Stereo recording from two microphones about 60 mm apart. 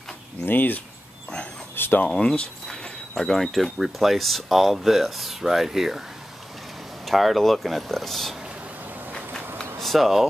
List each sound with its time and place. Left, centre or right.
0.5 s speech: left
1.8 s speech: left
2.0 s speech: centre
7.1 s speech: centre
9.6 s a sound: centre